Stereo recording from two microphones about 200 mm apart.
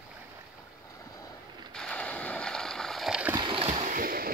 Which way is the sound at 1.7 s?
5° left (ahead or behind).